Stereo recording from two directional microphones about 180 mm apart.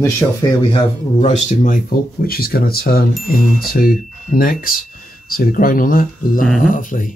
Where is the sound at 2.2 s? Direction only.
55° left (ahead or behind).